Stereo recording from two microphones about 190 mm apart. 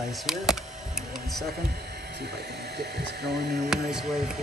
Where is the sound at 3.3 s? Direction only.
60° right (ahead or behind).